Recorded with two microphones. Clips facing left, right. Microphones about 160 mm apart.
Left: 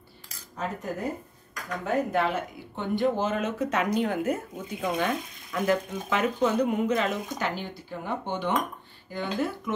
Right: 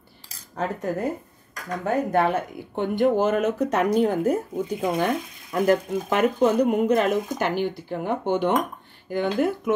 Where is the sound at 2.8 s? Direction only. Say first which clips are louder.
Right 5 dB; 55° right (ahead or behind).